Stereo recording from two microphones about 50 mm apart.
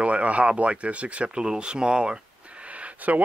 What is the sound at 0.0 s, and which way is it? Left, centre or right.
Speech, right.